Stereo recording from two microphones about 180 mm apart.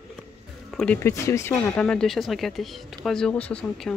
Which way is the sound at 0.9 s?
15° left (ahead or behind).